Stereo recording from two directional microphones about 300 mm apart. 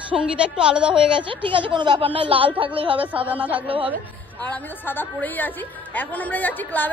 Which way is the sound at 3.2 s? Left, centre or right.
Centre.